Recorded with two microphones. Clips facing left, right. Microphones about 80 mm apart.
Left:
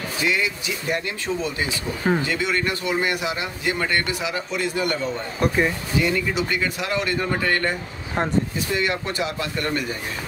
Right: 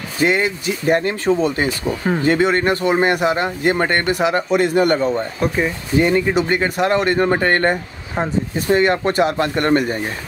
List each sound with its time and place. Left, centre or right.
0.2 s a man's voice: right
5.4 s speech: centre
5.9 s a man's voice: right
8.2 s speech: centre
8.5 s a man's voice: right